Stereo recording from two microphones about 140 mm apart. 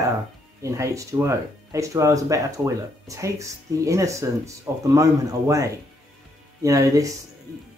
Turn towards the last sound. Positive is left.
turn(degrees=-25)  # may be behind; listen again after turning